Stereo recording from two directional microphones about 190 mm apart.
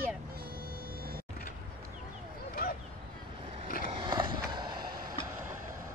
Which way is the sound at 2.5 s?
50° left (ahead or behind).